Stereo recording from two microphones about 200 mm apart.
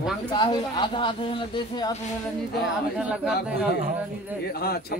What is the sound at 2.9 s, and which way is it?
Speech, 5° right (ahead or behind).